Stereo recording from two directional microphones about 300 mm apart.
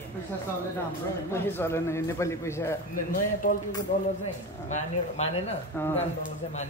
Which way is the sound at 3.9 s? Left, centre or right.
Left.